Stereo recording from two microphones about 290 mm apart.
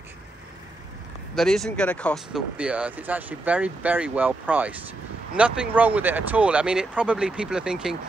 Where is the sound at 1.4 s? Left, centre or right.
Centre.